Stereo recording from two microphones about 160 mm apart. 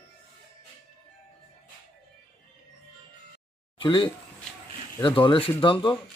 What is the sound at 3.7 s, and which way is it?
Speech, 30° left (ahead or behind).